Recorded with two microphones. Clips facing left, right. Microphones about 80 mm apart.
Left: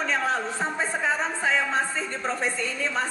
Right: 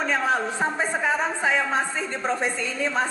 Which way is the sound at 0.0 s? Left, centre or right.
Centre.